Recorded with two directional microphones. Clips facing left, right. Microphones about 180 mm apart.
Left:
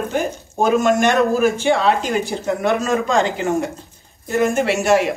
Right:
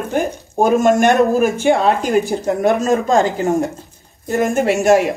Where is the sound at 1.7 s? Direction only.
55° right (ahead or behind).